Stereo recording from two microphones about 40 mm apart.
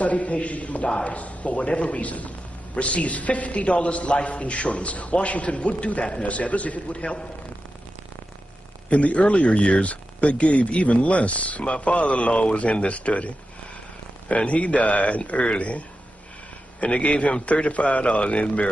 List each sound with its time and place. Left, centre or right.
0.0 s a man's voice: left
8.9 s a man's voice: left
14.3 s a man's voice: left
16.8 s a man's voice: left